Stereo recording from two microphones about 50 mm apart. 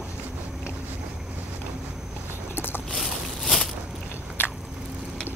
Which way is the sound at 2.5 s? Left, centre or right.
Left.